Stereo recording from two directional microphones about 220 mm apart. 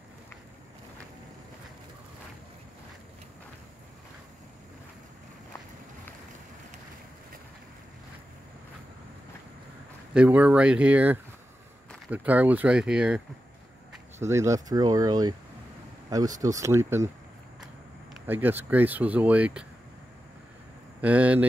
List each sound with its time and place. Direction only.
10.1 s speech: 5° right (ahead or behind)
14.2 s speech: 15° right (ahead or behind)
18.2 s speech: 10° right (ahead or behind)
21.0 s speech: 5° right (ahead or behind)